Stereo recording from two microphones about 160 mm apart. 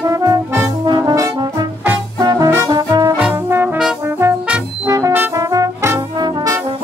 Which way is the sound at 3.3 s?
15° right (ahead or behind).